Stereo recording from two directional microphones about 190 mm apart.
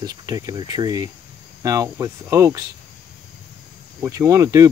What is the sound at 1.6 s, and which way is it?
Cricket, 15° right (ahead or behind).